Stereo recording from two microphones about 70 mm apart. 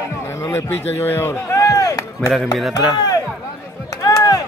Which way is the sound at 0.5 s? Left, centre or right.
Left.